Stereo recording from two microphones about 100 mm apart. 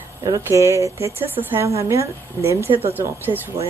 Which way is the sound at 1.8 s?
30° right (ahead or behind).